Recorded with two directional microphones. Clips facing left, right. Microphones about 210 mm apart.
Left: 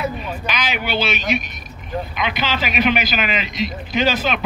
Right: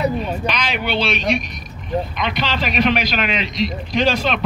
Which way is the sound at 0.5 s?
5° left (ahead or behind).